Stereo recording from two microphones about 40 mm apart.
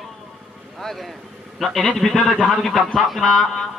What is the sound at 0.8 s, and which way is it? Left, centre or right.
A man's voice, centre.